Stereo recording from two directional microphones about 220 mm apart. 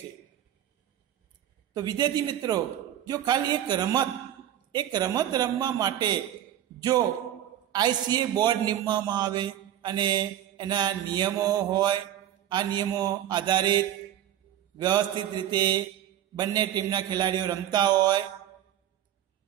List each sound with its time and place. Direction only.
1.7 s a man's voice: 20° right (ahead or behind)